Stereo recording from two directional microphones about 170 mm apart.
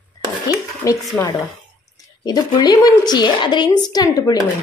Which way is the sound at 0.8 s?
20° left (ahead or behind).